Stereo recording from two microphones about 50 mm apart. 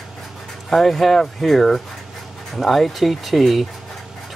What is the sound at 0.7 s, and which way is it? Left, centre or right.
Speech, centre.